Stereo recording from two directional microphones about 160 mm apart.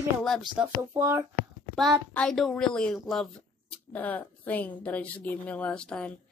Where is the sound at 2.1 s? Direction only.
5° left (ahead or behind).